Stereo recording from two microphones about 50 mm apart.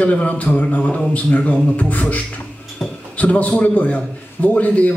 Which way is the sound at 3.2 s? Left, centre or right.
Left.